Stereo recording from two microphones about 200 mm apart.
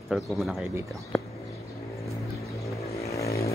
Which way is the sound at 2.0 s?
15° left (ahead or behind).